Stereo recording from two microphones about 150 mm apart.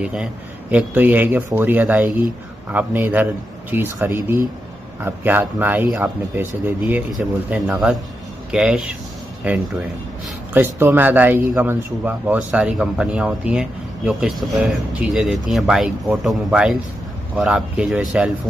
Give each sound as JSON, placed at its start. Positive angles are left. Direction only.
{"t": 0.0, "sound": "a man's voice", "side_deg": -5}